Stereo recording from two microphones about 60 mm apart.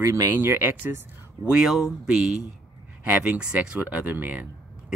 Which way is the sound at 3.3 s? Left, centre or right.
Centre.